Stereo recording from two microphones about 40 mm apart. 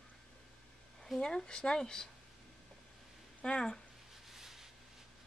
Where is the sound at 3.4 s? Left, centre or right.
Left.